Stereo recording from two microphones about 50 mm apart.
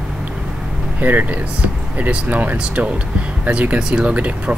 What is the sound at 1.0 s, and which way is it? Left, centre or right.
Speech, right.